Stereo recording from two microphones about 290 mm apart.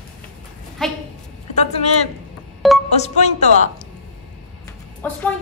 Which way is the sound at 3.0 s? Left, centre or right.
Left.